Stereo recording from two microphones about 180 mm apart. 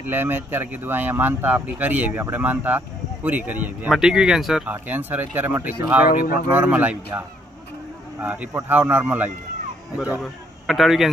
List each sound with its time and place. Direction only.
0.1 s speech: 10° right (ahead or behind)
6.0 s speech: 50° left (ahead or behind)
6.7 s a man's voice: 10° right (ahead or behind)